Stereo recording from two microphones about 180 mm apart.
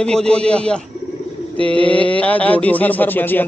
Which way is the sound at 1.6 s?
30° right (ahead or behind).